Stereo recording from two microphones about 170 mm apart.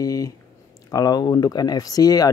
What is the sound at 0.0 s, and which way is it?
Speech, 20° left (ahead or behind).